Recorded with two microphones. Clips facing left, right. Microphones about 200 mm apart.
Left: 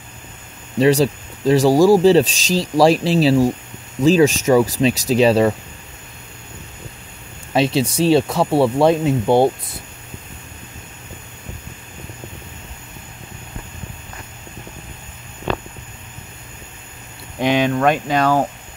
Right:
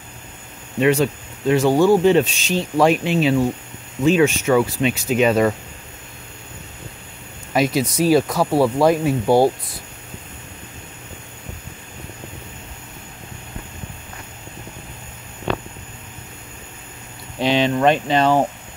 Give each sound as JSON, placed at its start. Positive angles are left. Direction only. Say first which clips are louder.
{"t": 0.7, "sound": "speech", "louder": "left 3 dB", "side_deg": 35}
{"t": 7.5, "sound": "speech", "louder": "left 1 dB", "side_deg": 30}
{"t": 8.5, "sound": "speech", "louder": "left 1 dB", "side_deg": 0}
{"t": 8.8, "sound": "speech", "louder": "left 1 dB", "side_deg": 25}
{"t": 17.4, "sound": "a sound", "louder": "left 1 dB", "side_deg": 15}
{"t": 17.8, "sound": "speech", "louder": "right 1 dB", "side_deg": 10}
{"t": 18.2, "sound": "speech", "louder": "even", "side_deg": -15}